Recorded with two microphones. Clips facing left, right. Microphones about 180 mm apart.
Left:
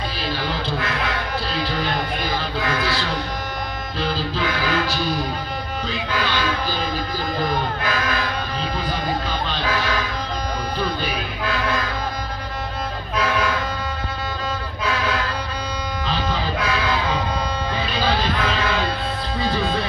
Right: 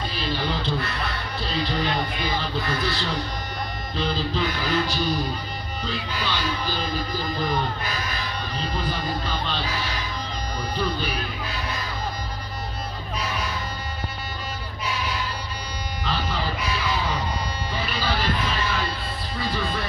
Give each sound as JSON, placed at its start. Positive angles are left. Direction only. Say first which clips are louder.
{"t": 0.7, "sound": "music", "louder": "left 4 dB", "side_deg": 90}
{"t": 4.4, "sound": "music", "louder": "left 2 dB", "side_deg": 90}
{"t": 6.1, "sound": "music", "louder": "left 6 dB", "side_deg": 90}
{"t": 7.8, "sound": "music", "louder": "left 7 dB", "side_deg": 90}
{"t": 9.6, "sound": "music", "louder": "left 6 dB", "side_deg": 90}
{"t": 11.4, "sound": "music", "louder": "left 8 dB", "side_deg": 90}
{"t": 13.1, "sound": "vehicle", "louder": "left 9 dB", "side_deg": 90}
{"t": 16.5, "sound": "music", "louder": "left 5 dB", "side_deg": 90}